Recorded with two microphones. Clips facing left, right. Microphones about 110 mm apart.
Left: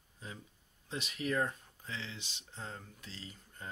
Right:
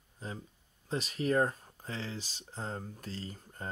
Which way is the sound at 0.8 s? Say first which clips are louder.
Right 5 dB; 35° right (ahead or behind).